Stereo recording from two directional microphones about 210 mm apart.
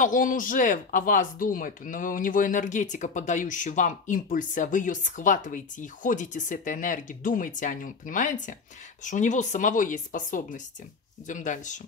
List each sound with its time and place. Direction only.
0.0 s speech: 40° left (ahead or behind)